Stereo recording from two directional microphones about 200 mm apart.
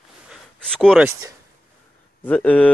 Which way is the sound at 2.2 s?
10° left (ahead or behind).